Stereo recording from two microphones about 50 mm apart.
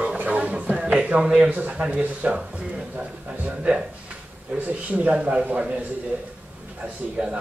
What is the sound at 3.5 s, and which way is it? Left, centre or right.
A man's voice, right.